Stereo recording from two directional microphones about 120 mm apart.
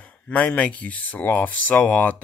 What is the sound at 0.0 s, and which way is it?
Speech, 10° left (ahead or behind).